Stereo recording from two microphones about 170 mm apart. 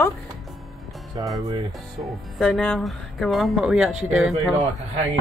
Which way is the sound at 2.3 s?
5° left (ahead or behind).